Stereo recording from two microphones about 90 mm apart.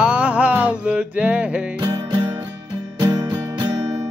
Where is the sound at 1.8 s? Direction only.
50° right (ahead or behind).